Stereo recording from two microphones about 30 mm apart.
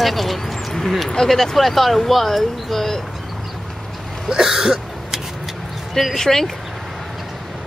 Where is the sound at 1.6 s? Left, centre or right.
Centre.